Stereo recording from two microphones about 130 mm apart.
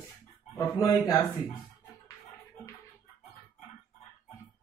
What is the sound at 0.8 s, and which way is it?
Speech, 20° left (ahead or behind).